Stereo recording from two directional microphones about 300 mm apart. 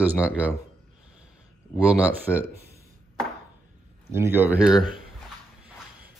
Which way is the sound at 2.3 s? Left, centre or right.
Centre.